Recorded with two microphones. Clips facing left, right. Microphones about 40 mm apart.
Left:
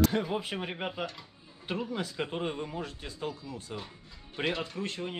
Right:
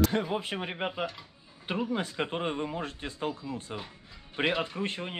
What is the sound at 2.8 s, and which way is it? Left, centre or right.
Speech, right.